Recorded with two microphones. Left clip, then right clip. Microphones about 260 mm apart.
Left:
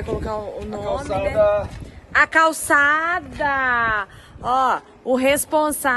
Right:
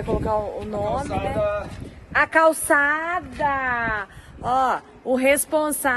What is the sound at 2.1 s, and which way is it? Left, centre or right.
Speech, centre.